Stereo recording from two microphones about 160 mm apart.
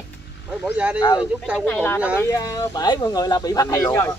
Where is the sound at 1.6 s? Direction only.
5° left (ahead or behind).